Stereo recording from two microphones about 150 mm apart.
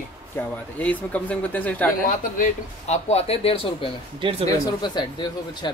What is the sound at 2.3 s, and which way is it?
Speech, 55° left (ahead or behind).